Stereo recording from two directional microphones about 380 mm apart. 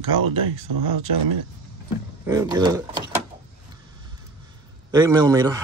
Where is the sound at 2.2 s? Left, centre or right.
Centre.